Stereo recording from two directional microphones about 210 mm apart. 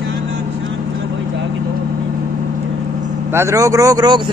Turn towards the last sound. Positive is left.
turn(degrees=-15)  # may be behind; listen again after turning